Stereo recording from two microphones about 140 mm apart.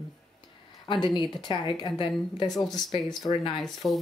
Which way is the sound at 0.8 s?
35° left (ahead or behind).